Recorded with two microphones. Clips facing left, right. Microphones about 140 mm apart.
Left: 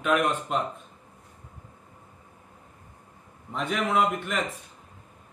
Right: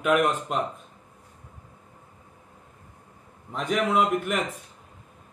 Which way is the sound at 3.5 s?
5° right (ahead or behind).